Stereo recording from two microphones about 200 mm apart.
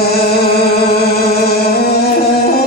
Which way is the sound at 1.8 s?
50° left (ahead or behind).